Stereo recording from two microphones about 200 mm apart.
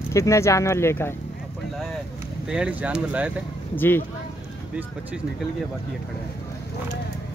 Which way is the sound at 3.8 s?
10° left (ahead or behind).